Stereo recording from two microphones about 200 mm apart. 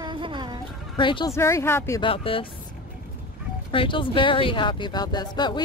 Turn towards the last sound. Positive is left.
turn(degrees=20)  # may be behind; listen again after turning